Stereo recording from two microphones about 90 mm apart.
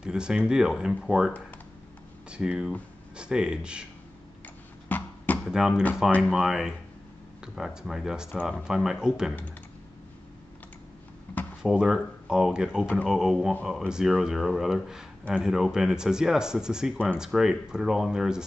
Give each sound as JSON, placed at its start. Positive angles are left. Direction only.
{"t": 0.0, "sound": "speech", "side_deg": -10}
{"t": 2.3, "sound": "speech", "side_deg": -10}
{"t": 4.8, "sound": "a sound", "side_deg": 20}
{"t": 5.5, "sound": "speech", "side_deg": -5}
{"t": 11.6, "sound": "speech", "side_deg": -10}
{"t": 12.8, "sound": "speech", "side_deg": 10}
{"t": 13.1, "sound": "speech", "side_deg": -5}